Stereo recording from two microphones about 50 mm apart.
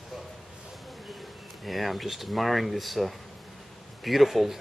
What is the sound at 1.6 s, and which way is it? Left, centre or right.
Speech, centre.